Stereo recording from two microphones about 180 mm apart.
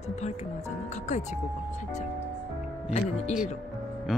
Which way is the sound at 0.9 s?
40° left (ahead or behind).